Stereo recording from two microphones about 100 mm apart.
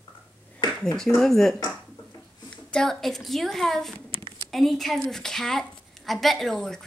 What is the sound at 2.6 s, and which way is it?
A woman's voice, 5° left (ahead or behind).